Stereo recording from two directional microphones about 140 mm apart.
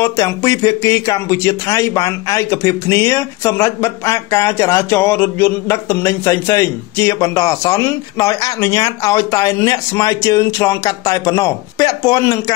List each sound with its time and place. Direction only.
0.0 s speech: 20° left (ahead or behind)